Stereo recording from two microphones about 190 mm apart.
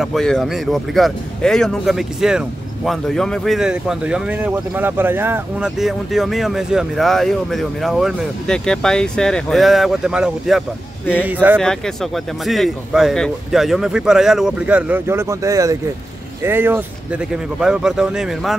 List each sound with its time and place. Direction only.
0.0 s speech: centre (ahead or behind)
11.5 s speech: 5° left (ahead or behind)